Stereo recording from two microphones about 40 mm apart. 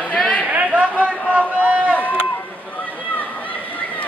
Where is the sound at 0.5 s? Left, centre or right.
Right.